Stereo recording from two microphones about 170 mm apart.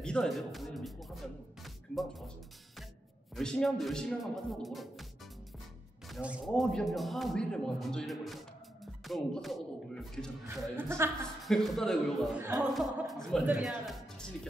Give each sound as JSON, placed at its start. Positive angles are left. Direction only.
{"t": 0.0, "sound": "speech", "side_deg": 5}
{"t": 3.3, "sound": "a man's voice", "side_deg": 5}
{"t": 6.0, "sound": "a man's voice", "side_deg": -5}
{"t": 10.8, "sound": "a woman's voice", "side_deg": -15}
{"t": 11.4, "sound": "a man's voice", "side_deg": 0}